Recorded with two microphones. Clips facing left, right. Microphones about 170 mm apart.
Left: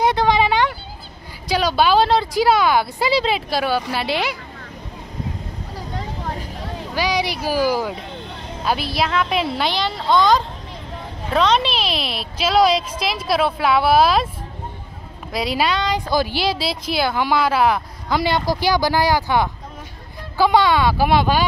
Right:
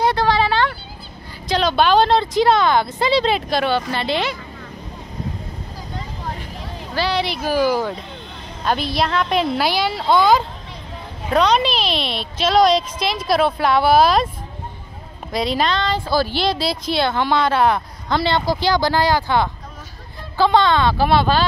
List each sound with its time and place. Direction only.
0.0 s a sound: 20° left (ahead or behind)
1.5 s a woman's voice: 10° left (ahead or behind)
7.0 s speech: 10° left (ahead or behind)
15.3 s a woman's voice: 5° left (ahead or behind)